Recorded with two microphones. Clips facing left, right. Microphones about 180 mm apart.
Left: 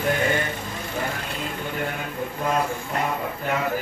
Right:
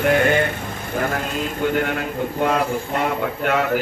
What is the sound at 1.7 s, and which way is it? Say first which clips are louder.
A man's voice: right 7 dB; 85° right.